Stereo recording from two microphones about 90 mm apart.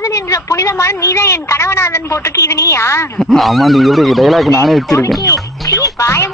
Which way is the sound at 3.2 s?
5° left (ahead or behind).